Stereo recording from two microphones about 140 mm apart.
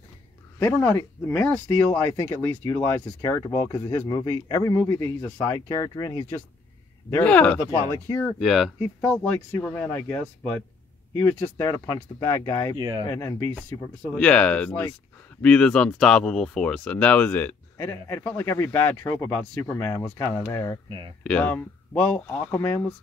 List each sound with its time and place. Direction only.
0.6 s speech: 15° left (ahead or behind)
7.1 s speech: 10° left (ahead or behind)
8.4 s speech: centre (ahead or behind)
9.0 s speech: 10° left (ahead or behind)
12.7 s speech: 30° right (ahead or behind)
13.1 s speech: 20° left (ahead or behind)
13.6 s speech: 10° left (ahead or behind)
21.2 s speech: 10° left (ahead or behind)
22.6 s speech: 25° left (ahead or behind)